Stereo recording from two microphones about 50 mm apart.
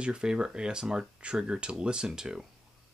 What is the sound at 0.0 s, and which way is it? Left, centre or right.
Speech, centre.